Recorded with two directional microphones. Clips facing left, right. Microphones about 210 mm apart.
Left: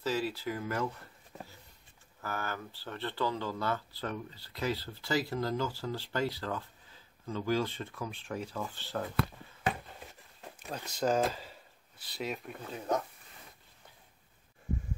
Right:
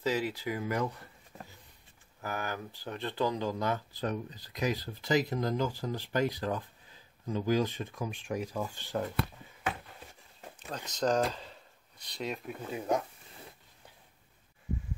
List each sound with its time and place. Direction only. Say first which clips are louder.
0.0 s speech: right 1 dB; 15° right (ahead or behind)
2.2 s speech: right 1 dB; 15° right (ahead or behind)
10.7 s speech: right 1 dB; 10° left (ahead or behind)
12.7 s speech: right 2 dB; 10° right (ahead or behind)